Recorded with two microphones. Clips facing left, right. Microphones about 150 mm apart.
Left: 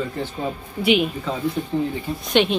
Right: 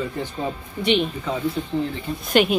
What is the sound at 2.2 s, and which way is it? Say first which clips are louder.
Speech: even; 5° right (ahead or behind).